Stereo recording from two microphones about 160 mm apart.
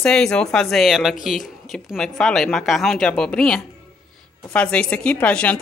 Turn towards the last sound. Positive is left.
turn(degrees=10)  # may be behind; listen again after turning